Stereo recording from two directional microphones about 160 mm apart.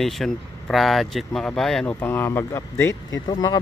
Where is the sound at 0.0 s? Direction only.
Centre (ahead or behind).